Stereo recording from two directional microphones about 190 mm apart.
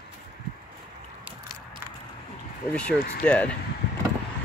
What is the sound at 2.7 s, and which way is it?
Speech, 5° left (ahead or behind).